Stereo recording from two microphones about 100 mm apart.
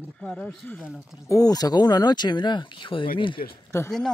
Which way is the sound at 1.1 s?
35° left (ahead or behind).